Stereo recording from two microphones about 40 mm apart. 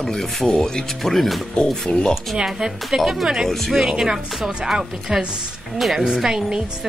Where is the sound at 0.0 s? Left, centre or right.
Centre.